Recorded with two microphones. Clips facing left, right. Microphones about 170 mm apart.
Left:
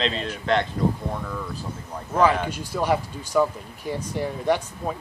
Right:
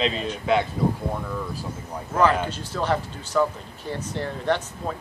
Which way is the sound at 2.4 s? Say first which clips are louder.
Left 1 dB; 10° left (ahead or behind).